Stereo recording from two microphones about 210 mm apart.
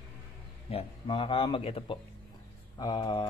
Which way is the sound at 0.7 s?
25° left (ahead or behind).